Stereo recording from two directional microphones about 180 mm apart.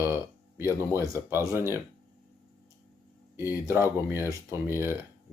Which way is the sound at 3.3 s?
15° right (ahead or behind).